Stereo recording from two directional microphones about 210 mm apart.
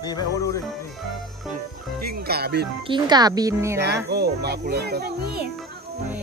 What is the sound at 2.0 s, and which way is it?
Speech, 50° right (ahead or behind).